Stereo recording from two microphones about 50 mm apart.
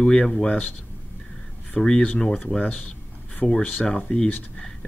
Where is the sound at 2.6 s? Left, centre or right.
Left.